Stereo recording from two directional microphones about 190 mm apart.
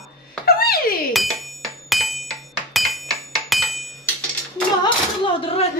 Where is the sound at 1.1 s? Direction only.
Centre (ahead or behind).